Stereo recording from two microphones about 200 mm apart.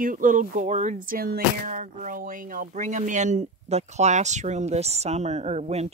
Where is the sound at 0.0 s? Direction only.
40° right (ahead or behind).